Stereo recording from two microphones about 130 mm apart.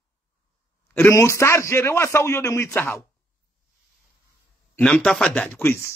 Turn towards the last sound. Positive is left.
turn(degrees=15)  # may be behind; listen again after turning